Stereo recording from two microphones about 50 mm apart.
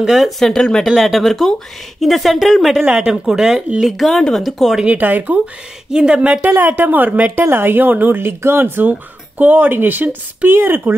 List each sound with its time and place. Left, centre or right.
0.0 s speech: centre
0.4 s speech: centre
3.1 s speech: centre
4.8 s speech: right
5.9 s speech: centre
6.4 s speech: right
8.2 s speech: right